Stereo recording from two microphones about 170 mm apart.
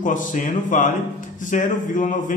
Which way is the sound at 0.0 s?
50° left (ahead or behind).